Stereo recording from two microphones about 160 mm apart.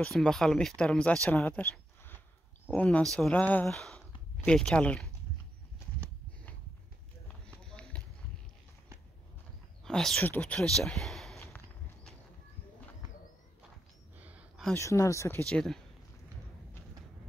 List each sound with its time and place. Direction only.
0.0 s speech: 5° left (ahead or behind)
7.6 s run: 5° left (ahead or behind)
9.8 s speech: 5° left (ahead or behind)
14.8 s speech: 20° left (ahead or behind)
15.4 s speech: 5° left (ahead or behind)